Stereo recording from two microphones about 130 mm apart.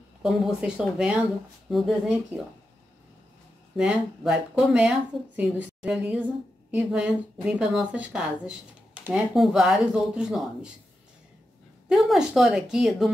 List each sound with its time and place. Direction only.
0.2 s speech: 5° right (ahead or behind)
3.7 s speech: 5° right (ahead or behind)
11.9 s speech: centre (ahead or behind)